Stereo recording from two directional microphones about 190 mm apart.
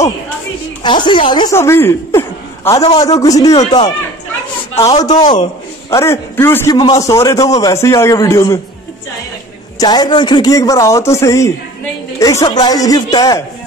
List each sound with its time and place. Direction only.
0.8 s a man's voice: 25° left (ahead or behind)
5.0 s a man's voice: 25° left (ahead or behind)
9.8 s a man's voice: 20° left (ahead or behind)